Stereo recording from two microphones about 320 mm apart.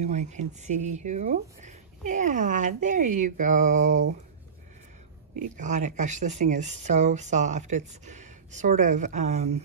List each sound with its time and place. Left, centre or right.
0.0 s speech: right
5.6 s speech: right